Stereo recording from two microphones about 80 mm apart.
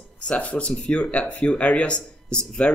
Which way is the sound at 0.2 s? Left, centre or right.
Centre.